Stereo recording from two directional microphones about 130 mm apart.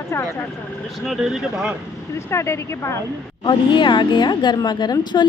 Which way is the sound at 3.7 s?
35° left (ahead or behind).